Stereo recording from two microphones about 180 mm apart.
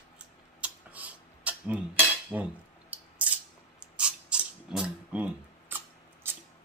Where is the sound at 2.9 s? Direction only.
10° right (ahead or behind).